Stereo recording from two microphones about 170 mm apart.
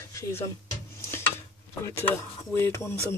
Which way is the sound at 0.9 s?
15° left (ahead or behind).